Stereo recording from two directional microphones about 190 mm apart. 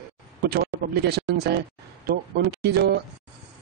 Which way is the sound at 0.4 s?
55° right (ahead or behind).